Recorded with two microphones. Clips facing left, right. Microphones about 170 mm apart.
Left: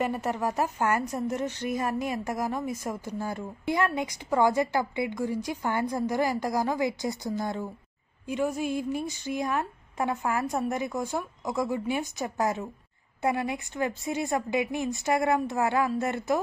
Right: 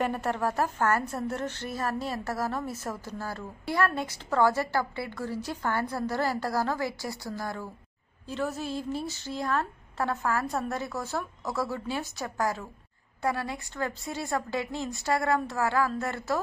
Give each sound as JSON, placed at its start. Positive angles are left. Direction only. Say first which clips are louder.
{"t": 0.0, "sound": "a woman's voice", "louder": "even", "side_deg": 10}